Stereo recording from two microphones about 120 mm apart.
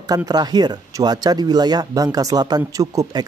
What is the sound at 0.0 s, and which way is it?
Speech, 30° right (ahead or behind).